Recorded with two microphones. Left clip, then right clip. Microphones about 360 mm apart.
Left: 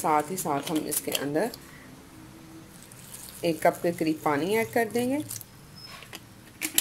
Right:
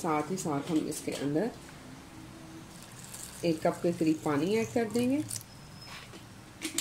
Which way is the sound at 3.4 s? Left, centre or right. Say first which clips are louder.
Left 5 dB; left.